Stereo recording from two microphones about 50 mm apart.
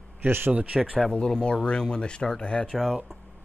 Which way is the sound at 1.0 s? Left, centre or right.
Centre.